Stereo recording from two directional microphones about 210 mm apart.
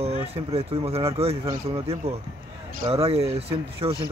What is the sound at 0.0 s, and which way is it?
Speech, 30° right (ahead or behind).